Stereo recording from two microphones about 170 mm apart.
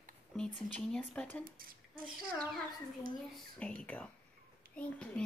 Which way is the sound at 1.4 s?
55° right (ahead or behind).